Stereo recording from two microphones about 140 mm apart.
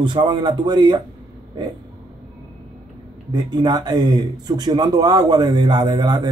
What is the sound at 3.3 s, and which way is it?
Speech, 30° right (ahead or behind).